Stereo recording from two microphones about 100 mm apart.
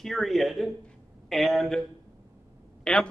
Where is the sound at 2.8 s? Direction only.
10° left (ahead or behind).